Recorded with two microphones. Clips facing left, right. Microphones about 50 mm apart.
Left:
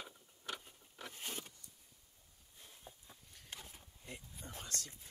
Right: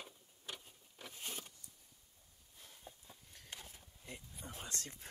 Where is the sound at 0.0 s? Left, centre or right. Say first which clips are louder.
Left 3 dB; left.